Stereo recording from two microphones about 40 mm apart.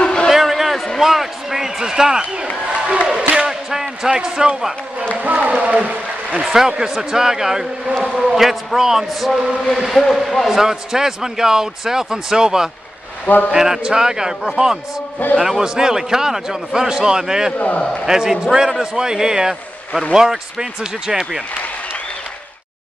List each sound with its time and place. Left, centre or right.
0.0 s a sound: left
0.3 s a sound: centre
1.8 s a man's voice: centre
2.6 s a sound: right
3.3 s a sound: centre
4.1 s speech: centre
5.2 s speech: right
5.6 s speech: right
6.4 s a man's voice: centre
7.9 s speech: centre
8.2 s a man's voice: centre
10.6 s a man's voice: centre
15.3 s a man's voice: centre